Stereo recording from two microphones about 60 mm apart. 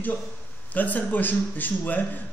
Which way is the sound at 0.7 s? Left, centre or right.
Left.